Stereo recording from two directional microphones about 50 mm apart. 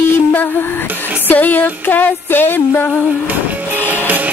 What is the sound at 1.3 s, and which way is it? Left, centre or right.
Music, left.